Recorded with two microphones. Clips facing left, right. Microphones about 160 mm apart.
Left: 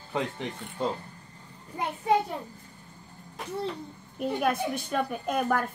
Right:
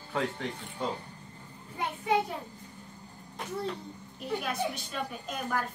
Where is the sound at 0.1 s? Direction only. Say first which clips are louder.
Left 1 dB; 20° left (ahead or behind).